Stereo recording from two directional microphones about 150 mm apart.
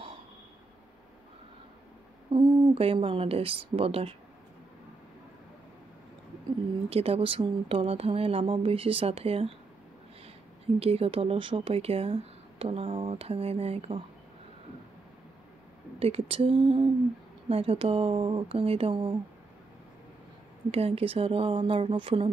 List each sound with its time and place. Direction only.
2.3 s speech: 25° right (ahead or behind)
2.7 s speech: 40° right (ahead or behind)
6.9 s speech: 40° right (ahead or behind)
10.8 s speech: 40° right (ahead or behind)
16.0 s speech: 40° right (ahead or behind)
20.7 s speech: 40° right (ahead or behind)